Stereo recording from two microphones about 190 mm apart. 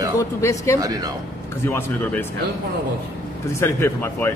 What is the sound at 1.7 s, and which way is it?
Speech, 15° left (ahead or behind).